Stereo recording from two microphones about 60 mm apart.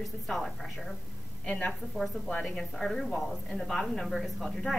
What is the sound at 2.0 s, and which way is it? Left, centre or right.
Speech, centre.